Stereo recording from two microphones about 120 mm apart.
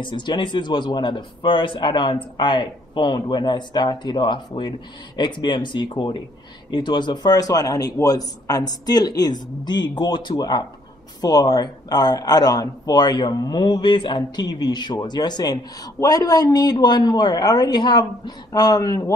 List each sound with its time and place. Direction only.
0.0 s speech: 40° left (ahead or behind)